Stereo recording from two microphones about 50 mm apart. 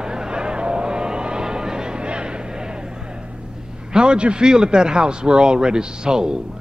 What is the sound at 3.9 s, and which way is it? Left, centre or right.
A man's voice, centre.